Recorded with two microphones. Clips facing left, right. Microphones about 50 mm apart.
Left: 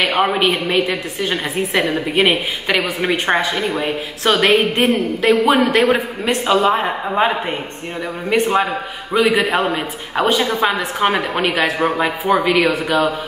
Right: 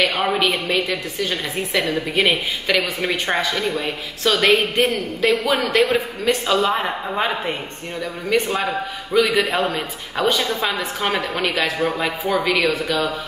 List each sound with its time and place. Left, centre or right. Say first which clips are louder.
0.0 s a woman's voice: left 3 dB; left